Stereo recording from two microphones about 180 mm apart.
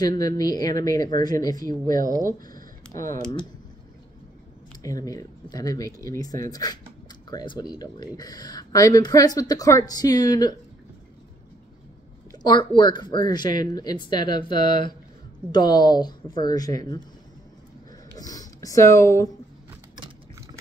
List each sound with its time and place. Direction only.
0.0 s speech: 20° left (ahead or behind)
2.2 s a sound: 50° right (ahead or behind)
5.0 s speech: 20° left (ahead or behind)
12.3 s speech: 25° left (ahead or behind)
18.1 s speech: 20° left (ahead or behind)